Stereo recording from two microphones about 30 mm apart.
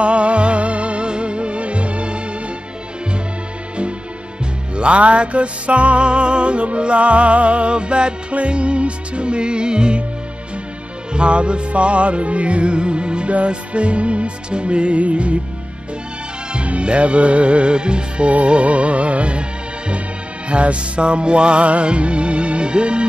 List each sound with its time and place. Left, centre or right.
0.0 s music: right
4.7 s music: right
11.1 s music: right
16.6 s music: right
20.4 s music: right